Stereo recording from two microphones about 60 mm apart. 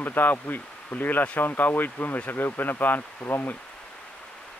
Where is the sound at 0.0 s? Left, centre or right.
Left.